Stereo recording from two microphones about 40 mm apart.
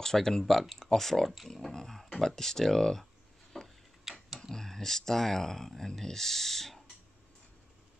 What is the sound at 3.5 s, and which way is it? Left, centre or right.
Tick-tock, centre.